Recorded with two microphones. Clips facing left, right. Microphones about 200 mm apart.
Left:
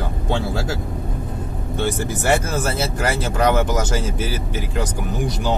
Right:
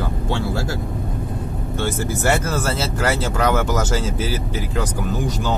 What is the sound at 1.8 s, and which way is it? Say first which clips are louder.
Speech: left 1 dB; 15° left (ahead or behind).